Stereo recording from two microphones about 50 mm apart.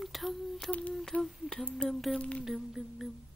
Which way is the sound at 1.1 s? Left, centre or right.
Left.